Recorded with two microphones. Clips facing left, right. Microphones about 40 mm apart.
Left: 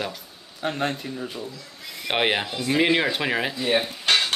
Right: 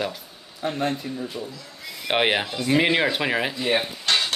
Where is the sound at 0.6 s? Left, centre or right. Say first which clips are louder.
Right 1 dB; left.